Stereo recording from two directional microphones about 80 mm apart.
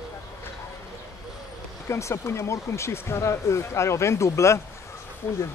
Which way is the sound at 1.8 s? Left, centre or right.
Left.